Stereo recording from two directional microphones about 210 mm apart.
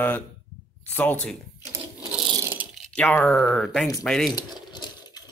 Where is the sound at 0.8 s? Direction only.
5° left (ahead or behind).